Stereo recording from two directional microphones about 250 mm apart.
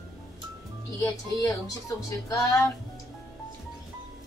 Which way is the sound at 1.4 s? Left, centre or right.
Centre.